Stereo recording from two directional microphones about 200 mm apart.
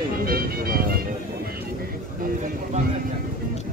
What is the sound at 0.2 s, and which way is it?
Music, 50° right (ahead or behind).